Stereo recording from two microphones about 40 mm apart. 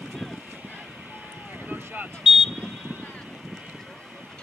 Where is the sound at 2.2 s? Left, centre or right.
Centre.